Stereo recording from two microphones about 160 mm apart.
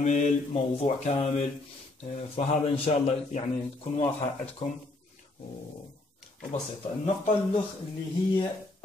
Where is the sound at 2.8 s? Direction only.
40° left (ahead or behind).